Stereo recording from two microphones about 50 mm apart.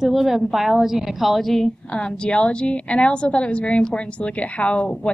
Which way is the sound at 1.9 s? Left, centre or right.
Centre.